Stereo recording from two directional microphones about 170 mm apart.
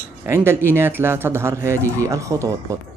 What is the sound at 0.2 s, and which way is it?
Speech, 15° right (ahead or behind).